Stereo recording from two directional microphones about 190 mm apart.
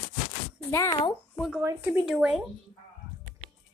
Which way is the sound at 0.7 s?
15° left (ahead or behind).